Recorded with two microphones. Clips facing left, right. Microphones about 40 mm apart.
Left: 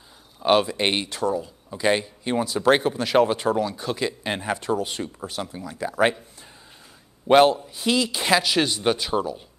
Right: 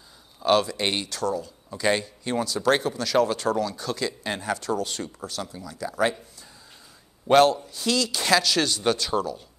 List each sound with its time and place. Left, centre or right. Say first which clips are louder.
0.4 s speech: left 2 dB; left
7.2 s speech: left 2 dB; centre